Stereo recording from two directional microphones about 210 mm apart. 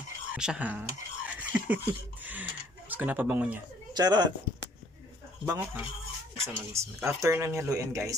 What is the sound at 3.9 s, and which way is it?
Speech, 20° right (ahead or behind).